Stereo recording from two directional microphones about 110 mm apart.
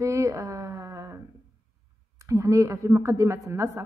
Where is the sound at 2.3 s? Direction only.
30° right (ahead or behind).